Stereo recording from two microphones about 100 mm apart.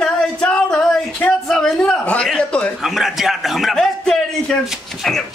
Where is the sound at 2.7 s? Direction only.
Centre (ahead or behind).